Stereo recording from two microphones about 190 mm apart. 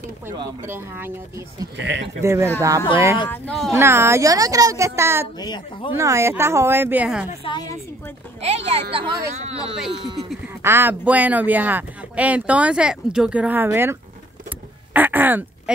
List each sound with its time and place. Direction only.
0.4 s speech: 10° right (ahead or behind)
1.8 s speech: 70° right (ahead or behind)
2.2 s speech: 15° right (ahead or behind)
3.3 s speech: 5° left (ahead or behind)
3.7 s speech: 15° right (ahead or behind)
5.4 s speech: 20° left (ahead or behind)
5.9 s speech: 15° right (ahead or behind)
7.4 s speech: 20° left (ahead or behind)
8.4 s speech: 30° right (ahead or behind)
10.6 s speech: 10° right (ahead or behind)
15.0 s speech: 10° right (ahead or behind)